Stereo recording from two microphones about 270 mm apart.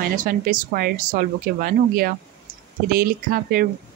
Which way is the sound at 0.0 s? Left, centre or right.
Right.